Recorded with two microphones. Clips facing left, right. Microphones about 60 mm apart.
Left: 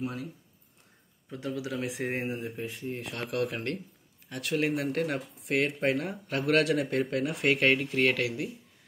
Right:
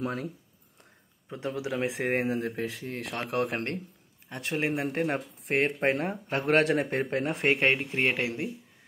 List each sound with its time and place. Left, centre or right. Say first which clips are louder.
0.0 s speech: right 3 dB; right
1.3 s speech: right 2 dB; right
2.1 s speech: right 5 dB; right
3.2 s speech: right 3 dB; right